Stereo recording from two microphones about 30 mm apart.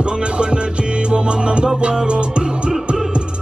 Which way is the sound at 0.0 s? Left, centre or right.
Right.